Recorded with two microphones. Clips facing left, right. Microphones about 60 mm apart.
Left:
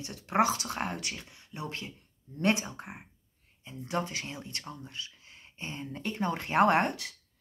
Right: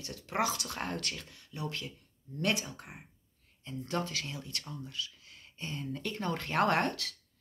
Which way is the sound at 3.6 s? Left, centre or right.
Centre.